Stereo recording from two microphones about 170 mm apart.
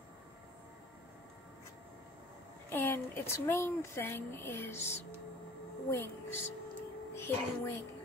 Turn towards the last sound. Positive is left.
turn(degrees=15)  # may be behind; listen again after turning